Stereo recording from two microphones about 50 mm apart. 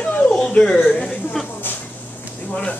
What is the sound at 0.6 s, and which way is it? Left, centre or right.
Speech, centre.